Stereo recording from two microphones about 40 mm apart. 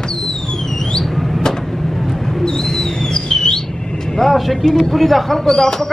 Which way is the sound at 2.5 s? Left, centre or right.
Centre.